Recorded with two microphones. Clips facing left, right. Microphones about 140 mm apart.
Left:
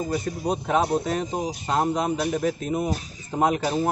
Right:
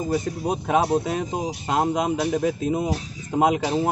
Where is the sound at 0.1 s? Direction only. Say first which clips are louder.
Right 2 dB; 15° right (ahead or behind).